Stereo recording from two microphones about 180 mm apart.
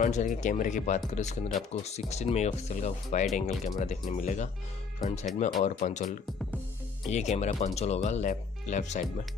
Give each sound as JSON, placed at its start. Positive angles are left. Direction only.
{"t": 0.0, "sound": "speech", "side_deg": 45}